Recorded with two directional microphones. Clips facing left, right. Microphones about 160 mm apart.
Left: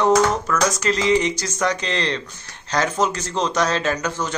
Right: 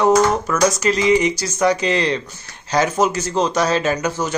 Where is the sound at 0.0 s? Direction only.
10° right (ahead or behind).